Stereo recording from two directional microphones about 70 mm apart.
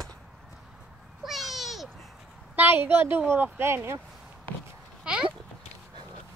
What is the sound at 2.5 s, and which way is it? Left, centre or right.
Speech, right.